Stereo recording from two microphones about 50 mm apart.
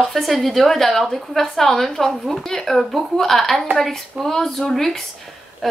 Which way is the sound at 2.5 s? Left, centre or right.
Centre.